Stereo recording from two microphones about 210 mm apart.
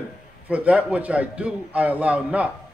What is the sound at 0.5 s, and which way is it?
A man's voice, 5° right (ahead or behind).